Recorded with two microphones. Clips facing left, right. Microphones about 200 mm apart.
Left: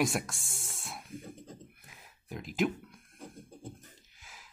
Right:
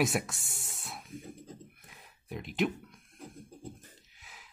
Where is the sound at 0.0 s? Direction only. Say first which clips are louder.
Right 1 dB; 5° right (ahead or behind).